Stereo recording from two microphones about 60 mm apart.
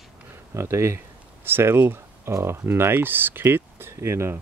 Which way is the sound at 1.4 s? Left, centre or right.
Right.